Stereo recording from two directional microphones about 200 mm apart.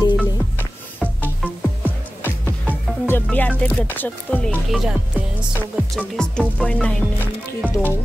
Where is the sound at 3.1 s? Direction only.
10° left (ahead or behind).